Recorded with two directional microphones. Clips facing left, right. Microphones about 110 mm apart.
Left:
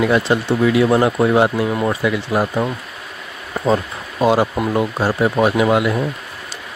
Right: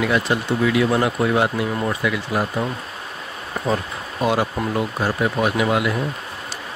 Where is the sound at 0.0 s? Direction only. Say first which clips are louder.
Left 4 dB; 30° left (ahead or behind).